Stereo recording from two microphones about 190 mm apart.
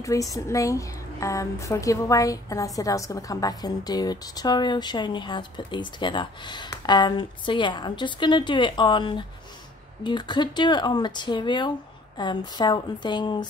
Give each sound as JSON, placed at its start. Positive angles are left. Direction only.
{"t": 0.0, "sound": "speech", "side_deg": 15}